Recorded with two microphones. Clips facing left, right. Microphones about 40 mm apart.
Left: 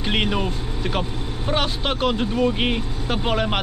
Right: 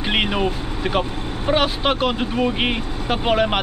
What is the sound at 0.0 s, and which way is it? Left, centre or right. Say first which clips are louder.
Speech: right 2 dB; centre.